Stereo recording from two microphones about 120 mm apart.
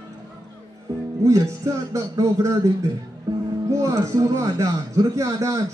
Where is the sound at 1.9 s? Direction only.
25° right (ahead or behind).